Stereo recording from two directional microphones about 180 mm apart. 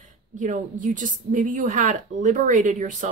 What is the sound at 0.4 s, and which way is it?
A woman's voice, 45° right (ahead or behind).